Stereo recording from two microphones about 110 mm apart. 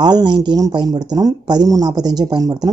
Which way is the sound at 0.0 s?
40° right (ahead or behind).